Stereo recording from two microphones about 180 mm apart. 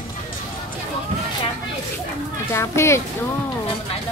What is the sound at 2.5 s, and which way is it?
Speech, 15° left (ahead or behind).